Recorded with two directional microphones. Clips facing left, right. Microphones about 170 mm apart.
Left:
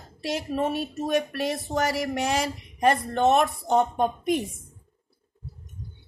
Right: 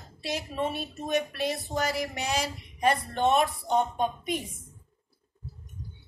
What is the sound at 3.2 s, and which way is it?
Speech, 45° left (ahead or behind).